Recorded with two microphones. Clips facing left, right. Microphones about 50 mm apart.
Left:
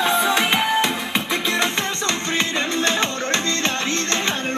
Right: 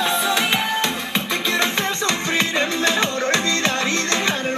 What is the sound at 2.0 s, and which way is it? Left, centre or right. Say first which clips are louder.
Music: right 2 dB; centre.